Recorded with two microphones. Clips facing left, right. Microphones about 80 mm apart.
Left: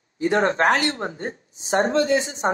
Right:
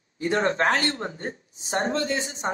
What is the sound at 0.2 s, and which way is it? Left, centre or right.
Speech, left.